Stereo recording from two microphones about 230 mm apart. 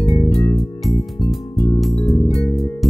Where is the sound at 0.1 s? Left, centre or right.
Centre.